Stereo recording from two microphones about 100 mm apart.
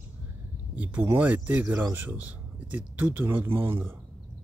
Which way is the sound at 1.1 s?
15° right (ahead or behind).